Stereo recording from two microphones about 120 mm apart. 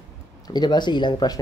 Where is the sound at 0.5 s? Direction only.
40° left (ahead or behind).